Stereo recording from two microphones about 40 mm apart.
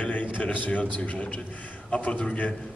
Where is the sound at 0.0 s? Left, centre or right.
Left.